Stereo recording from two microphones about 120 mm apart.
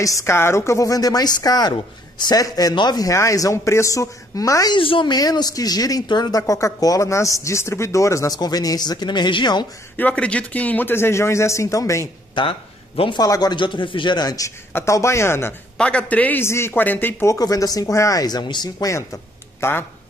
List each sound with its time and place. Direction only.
0.0 s a woman's voice: 25° left (ahead or behind)
4.7 s speech: 45° left (ahead or behind)
9.9 s a woman's voice: 10° left (ahead or behind)
12.4 s speech: 50° left (ahead or behind)
13.2 s a woman's voice: 35° left (ahead or behind)
15.8 s a woman's voice: 10° left (ahead or behind)